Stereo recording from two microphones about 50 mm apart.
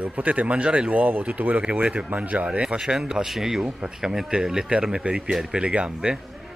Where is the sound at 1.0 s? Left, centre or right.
Right.